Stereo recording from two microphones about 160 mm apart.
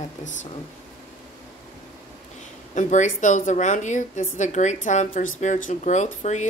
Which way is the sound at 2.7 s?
50° left (ahead or behind).